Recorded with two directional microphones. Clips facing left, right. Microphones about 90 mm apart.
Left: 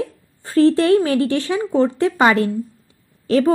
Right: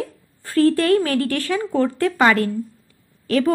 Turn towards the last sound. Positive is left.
turn(degrees=25)  # may be behind; listen again after turning